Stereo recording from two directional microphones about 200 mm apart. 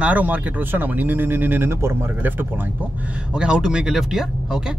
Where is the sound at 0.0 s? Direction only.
5° right (ahead or behind).